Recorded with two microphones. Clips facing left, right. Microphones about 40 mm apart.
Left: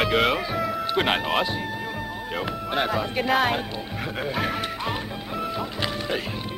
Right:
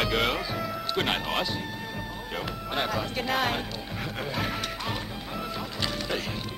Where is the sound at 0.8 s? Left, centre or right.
Centre.